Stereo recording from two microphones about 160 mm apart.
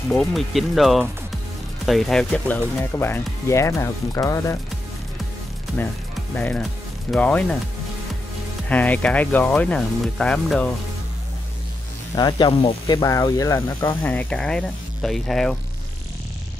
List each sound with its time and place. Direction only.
0.1 s speech: centre (ahead or behind); by 4.6 s 20° left (ahead or behind)
6.3 s speech: 5° left (ahead or behind)
8.6 s speech: 10° left (ahead or behind)
12.2 s speech: 25° left (ahead or behind); by 15.5 s centre (ahead or behind)